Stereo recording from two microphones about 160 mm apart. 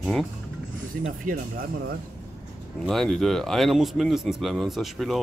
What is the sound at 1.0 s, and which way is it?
Speech, 55° right (ahead or behind).